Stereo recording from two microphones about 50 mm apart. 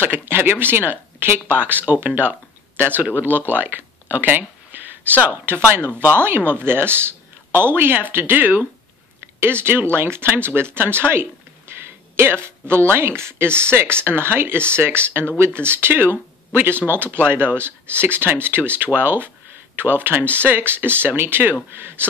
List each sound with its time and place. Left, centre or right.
0.0 s speech: right
9.4 s speech: right